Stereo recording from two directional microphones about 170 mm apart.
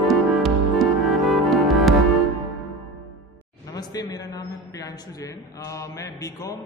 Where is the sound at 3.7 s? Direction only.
20° left (ahead or behind).